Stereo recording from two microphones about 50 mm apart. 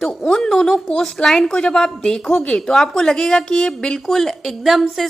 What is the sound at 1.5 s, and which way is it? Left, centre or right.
A woman's voice, centre.